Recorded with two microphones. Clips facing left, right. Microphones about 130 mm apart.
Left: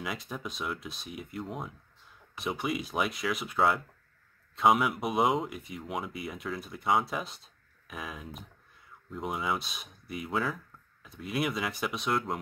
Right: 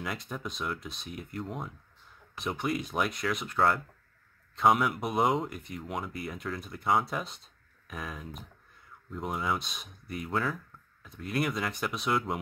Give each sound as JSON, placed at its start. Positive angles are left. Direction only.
{"t": 0.0, "sound": "speech", "side_deg": 0}